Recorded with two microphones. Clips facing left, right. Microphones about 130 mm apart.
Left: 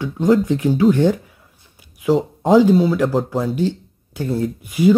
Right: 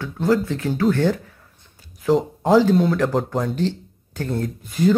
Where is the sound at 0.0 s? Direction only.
15° left (ahead or behind).